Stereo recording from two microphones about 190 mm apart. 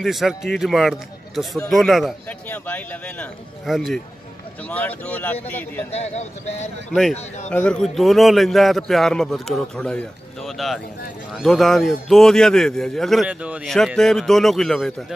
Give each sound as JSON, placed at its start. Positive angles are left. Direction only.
{"t": 0.0, "sound": "a man's voice", "side_deg": 0}
{"t": 2.4, "sound": "a man's voice", "side_deg": 10}
{"t": 5.9, "sound": "speech", "side_deg": 35}
{"t": 6.9, "sound": "a man's voice", "side_deg": 0}